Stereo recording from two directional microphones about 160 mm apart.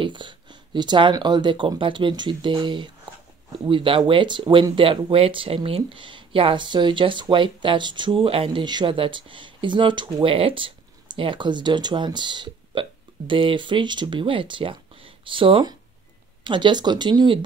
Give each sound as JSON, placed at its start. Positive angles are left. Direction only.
{"t": 0.0, "sound": "speech", "side_deg": -30}